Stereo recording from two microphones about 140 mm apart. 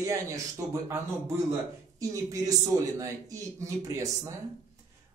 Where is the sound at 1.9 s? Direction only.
25° right (ahead or behind).